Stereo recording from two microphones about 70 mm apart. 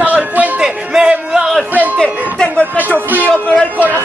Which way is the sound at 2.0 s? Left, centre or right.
Centre.